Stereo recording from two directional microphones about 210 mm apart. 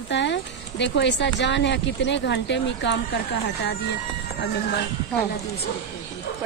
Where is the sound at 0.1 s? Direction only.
55° left (ahead or behind).